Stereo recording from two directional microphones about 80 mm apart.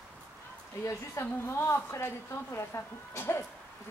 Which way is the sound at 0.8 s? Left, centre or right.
Left.